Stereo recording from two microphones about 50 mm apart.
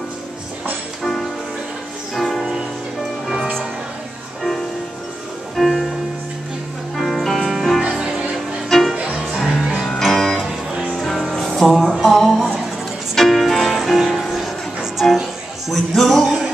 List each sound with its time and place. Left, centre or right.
2.1 s music: centre
4.4 s music: centre
7.0 s music: centre
8.6 s music: centre
8.9 s music: right
9.4 s music: centre
15.7 s music: centre